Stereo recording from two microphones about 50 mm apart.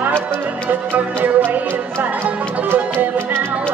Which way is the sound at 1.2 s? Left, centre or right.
Right.